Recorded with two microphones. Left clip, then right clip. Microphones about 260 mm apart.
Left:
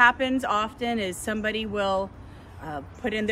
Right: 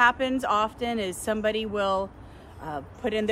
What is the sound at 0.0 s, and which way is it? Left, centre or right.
A woman's voice, centre.